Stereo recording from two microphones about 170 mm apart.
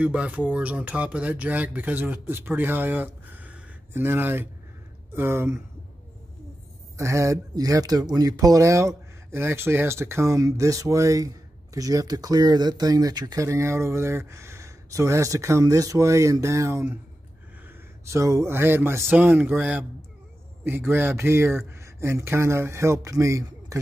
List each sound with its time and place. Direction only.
0.0 s speech: 5° right (ahead or behind)
7.0 s speech: 15° right (ahead or behind)
18.0 s speech: 20° right (ahead or behind)